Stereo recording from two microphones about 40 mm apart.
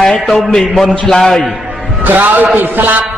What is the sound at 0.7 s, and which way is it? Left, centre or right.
Speech, centre.